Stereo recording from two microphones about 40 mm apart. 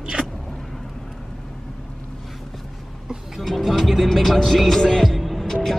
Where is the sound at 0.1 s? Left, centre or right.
Centre.